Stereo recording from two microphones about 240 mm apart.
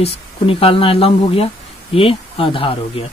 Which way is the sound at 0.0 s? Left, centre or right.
Left.